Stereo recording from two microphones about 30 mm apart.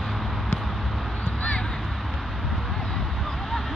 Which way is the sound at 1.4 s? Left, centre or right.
Left.